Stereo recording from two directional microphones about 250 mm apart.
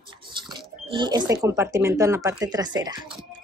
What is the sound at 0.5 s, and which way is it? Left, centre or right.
Speech, centre.